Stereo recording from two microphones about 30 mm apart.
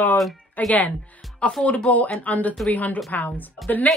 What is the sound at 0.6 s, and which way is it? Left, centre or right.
Speech, left.